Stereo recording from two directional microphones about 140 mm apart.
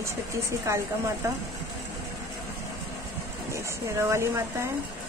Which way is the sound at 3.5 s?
20° right (ahead or behind).